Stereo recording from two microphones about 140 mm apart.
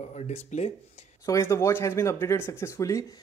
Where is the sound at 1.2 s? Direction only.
20° left (ahead or behind).